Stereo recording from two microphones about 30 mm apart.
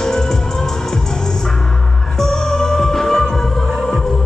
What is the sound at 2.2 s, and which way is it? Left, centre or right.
Music, centre.